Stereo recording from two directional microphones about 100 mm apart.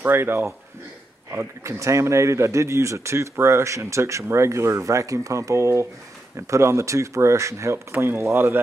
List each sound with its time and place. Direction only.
0.0 s speech: 20° right (ahead or behind)